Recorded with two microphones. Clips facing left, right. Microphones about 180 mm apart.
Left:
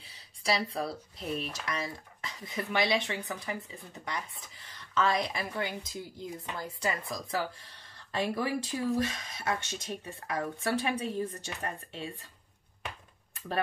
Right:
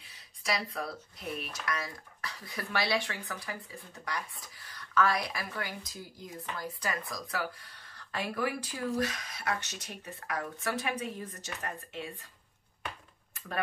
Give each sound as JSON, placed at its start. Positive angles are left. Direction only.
{"t": 0.4, "sound": "speech", "side_deg": 30}